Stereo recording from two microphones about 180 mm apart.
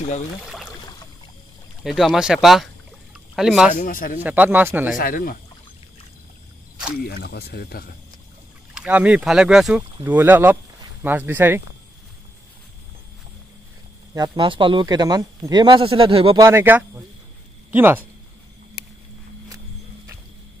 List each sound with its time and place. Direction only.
1.8 s speech: centre (ahead or behind)
3.7 s speech: 50° left (ahead or behind)
4.2 s speech: 10° right (ahead or behind)
4.9 s speech: 50° left (ahead or behind)
7.1 s speech: 65° left (ahead or behind)
8.7 s speech: 5° right (ahead or behind)
14.1 s speech: 25° right (ahead or behind)
16.3 s speech: 15° right (ahead or behind)